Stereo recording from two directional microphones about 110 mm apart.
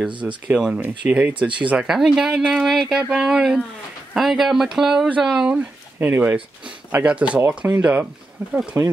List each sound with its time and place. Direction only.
0.5 s speech: 10° right (ahead or behind)
5.9 s speech: 20° right (ahead or behind)